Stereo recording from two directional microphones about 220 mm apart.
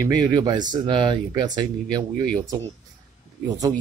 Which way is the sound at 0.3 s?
20° right (ahead or behind).